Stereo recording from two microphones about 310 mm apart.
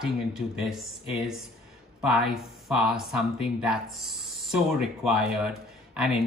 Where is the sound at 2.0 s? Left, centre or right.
Centre.